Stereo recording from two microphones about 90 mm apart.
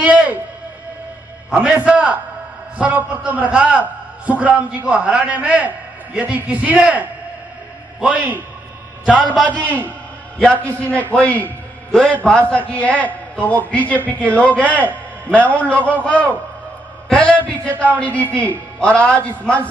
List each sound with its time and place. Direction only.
0.0 s music: 15° right (ahead or behind)
1.5 s a man's voice: 15° right (ahead or behind)
9.3 s a man's voice: 5° left (ahead or behind)
9.7 s a man's voice: 20° left (ahead or behind)